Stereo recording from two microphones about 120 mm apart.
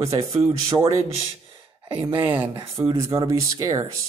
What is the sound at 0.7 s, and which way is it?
Speech, 25° right (ahead or behind).